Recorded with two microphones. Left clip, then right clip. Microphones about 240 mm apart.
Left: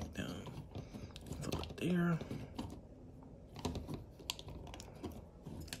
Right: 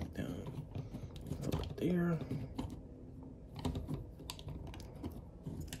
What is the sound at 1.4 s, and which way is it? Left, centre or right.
Computer keyboard, centre.